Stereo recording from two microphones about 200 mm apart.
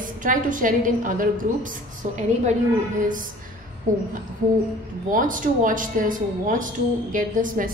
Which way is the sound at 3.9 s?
45° right (ahead or behind).